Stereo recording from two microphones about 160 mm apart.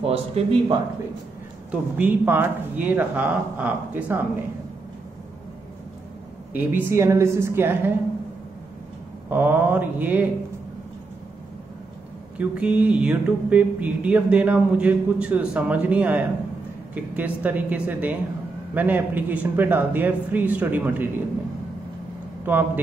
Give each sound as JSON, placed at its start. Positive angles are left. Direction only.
{"t": 0.0, "sound": "speech", "side_deg": -40}
{"t": 1.7, "sound": "mantra", "side_deg": -10}
{"t": 6.5, "sound": "mantra", "side_deg": -10}
{"t": 9.3, "sound": "mantra", "side_deg": -10}
{"t": 12.4, "sound": "mantra", "side_deg": -5}
{"t": 22.4, "sound": "a man's voice", "side_deg": -15}